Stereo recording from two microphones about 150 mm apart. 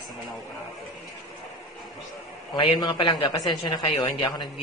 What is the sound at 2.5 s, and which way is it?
Speech, 30° left (ahead or behind).